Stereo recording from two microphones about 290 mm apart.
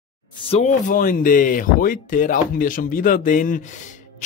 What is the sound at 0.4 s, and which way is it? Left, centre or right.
Speech, left.